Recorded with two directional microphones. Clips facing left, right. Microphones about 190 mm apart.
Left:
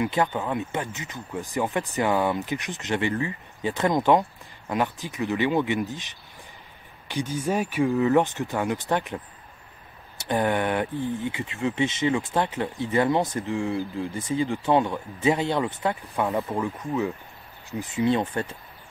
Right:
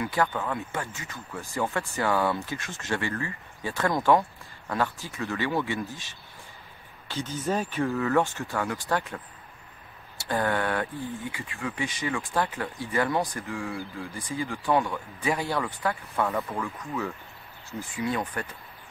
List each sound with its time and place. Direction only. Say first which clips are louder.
0.0 s speech: left 3 dB; 20° left (ahead or behind)